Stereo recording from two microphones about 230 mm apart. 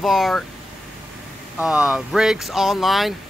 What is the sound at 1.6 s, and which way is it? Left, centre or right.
Speech, centre.